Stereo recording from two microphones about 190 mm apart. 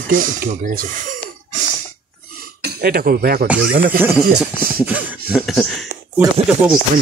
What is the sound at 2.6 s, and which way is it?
Speech, 55° right (ahead or behind).